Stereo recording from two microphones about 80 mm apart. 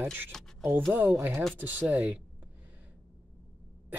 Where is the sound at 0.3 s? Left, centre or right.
Centre.